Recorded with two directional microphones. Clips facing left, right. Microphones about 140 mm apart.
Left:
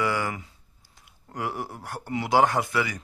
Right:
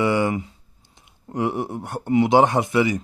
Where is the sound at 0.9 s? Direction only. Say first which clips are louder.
Right 9 dB; 20° right (ahead or behind).